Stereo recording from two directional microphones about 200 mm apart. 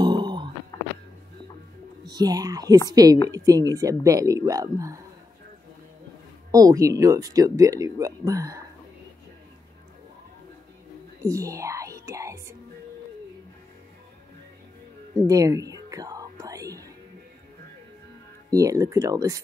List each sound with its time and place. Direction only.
0.0 s a sound: 20° right (ahead or behind)
2.0 s a woman's voice: 20° right (ahead or behind)
6.5 s speech: 15° right (ahead or behind)
11.2 s music: 15° right (ahead or behind)
15.2 s whispering: 15° right (ahead or behind)
18.5 s speech: 15° right (ahead or behind)